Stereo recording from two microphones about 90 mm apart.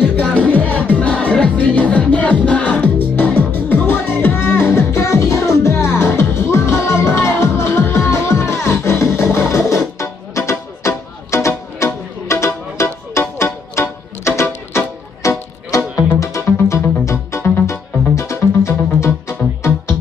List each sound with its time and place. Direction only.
0.3 s music: 20° left (ahead or behind)